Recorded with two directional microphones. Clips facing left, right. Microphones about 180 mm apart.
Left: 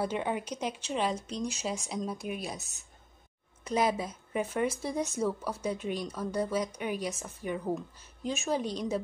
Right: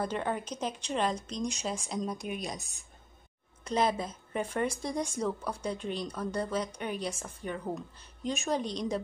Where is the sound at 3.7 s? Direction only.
10° left (ahead or behind).